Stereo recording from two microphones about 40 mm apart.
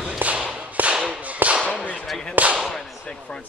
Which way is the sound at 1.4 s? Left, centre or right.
Right.